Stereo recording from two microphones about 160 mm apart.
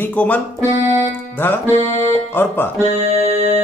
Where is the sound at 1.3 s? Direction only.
10° left (ahead or behind).